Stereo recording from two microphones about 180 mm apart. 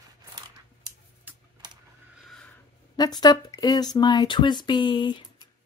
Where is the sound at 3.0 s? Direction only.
20° left (ahead or behind).